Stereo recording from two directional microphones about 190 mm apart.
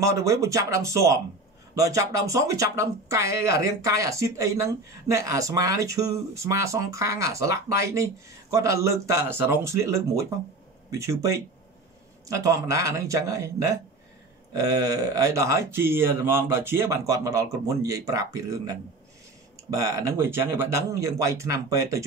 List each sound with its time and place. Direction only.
0.0 s speech: 15° right (ahead or behind)